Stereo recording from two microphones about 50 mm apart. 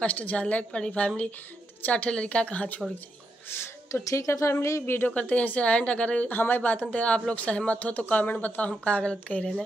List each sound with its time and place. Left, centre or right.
0.0 s speech: left
3.4 s a woman's voice: left
3.9 s speech: left
5.0 s speech: left
6.2 s speech: left
8.6 s speech: left